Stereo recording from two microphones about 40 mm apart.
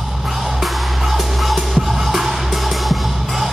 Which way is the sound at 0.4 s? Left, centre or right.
Centre.